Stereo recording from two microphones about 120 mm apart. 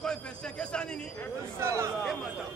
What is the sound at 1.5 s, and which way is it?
Speech, 25° right (ahead or behind).